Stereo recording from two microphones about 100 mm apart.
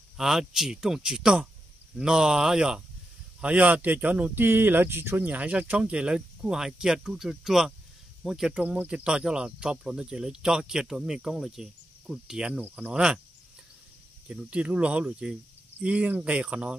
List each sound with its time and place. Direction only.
0.2 s speech: 5° right (ahead or behind)
14.3 s speech: 10° right (ahead or behind)